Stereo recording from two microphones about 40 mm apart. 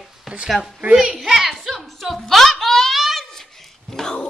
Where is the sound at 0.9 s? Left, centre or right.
Centre.